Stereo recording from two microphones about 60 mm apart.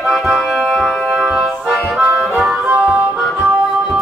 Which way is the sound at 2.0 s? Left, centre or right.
Centre.